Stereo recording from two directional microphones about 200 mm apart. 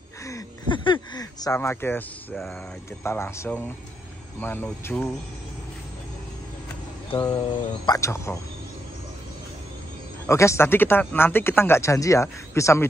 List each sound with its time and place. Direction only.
0.2 s a sound: 15° left (ahead or behind)
2.3 s speech: centre (ahead or behind)
3.0 s speech: 15° left (ahead or behind)
7.1 s speech: 20° left (ahead or behind)
10.2 s speech: 15° left (ahead or behind)